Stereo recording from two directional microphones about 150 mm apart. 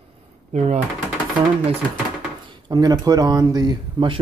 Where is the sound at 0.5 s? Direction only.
45° right (ahead or behind).